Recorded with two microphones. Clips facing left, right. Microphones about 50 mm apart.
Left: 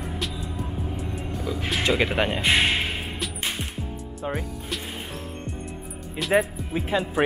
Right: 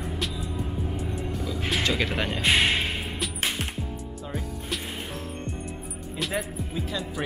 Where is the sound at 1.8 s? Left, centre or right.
Centre.